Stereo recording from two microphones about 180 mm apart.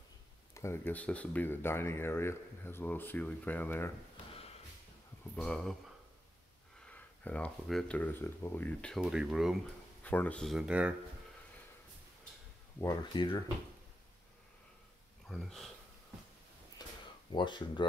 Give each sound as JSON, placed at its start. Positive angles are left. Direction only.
{"t": 0.6, "sound": "speech", "side_deg": 15}
{"t": 5.3, "sound": "speech", "side_deg": 5}
{"t": 6.8, "sound": "speech", "side_deg": 5}
{"t": 10.0, "sound": "speech", "side_deg": 10}
{"t": 12.8, "sound": "speech", "side_deg": 25}
{"t": 15.2, "sound": "speech", "side_deg": 0}
{"t": 16.8, "sound": "a sound", "side_deg": 20}
{"t": 17.3, "sound": "speech", "side_deg": 25}